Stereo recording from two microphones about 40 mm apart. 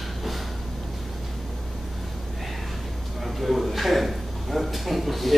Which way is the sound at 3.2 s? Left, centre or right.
Centre.